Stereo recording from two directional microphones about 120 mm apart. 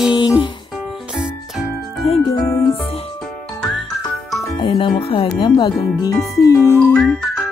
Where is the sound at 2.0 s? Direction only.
55° left (ahead or behind).